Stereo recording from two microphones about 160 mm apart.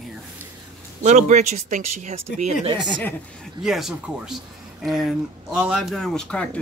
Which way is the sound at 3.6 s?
5° right (ahead or behind).